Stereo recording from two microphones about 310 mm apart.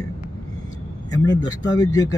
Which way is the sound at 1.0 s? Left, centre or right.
Centre.